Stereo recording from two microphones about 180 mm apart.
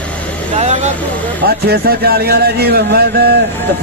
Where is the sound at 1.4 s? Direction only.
60° right (ahead or behind).